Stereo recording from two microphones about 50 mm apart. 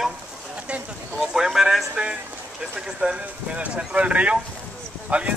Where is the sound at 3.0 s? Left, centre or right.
Centre.